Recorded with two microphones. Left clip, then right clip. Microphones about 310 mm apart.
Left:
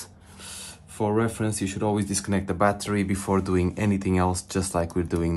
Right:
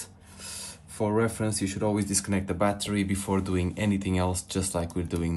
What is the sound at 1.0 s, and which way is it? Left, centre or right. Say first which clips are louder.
Speech: left 2 dB; left.